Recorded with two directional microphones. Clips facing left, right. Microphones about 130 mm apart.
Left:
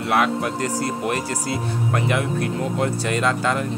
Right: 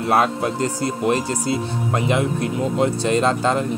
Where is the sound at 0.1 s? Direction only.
30° right (ahead or behind).